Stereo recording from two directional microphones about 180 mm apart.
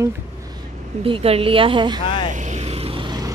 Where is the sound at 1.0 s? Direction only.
30° right (ahead or behind).